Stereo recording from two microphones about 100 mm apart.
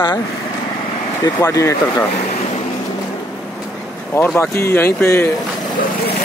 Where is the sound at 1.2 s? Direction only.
35° left (ahead or behind).